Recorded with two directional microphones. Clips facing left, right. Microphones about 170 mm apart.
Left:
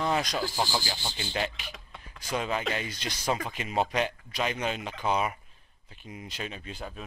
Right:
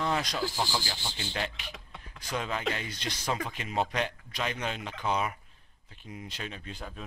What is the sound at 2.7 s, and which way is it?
Speech, 10° left (ahead or behind).